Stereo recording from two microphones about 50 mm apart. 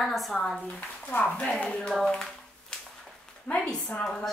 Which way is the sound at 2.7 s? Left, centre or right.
Centre.